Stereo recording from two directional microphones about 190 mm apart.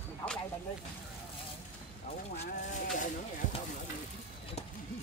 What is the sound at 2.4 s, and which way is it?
Sheep, 40° left (ahead or behind).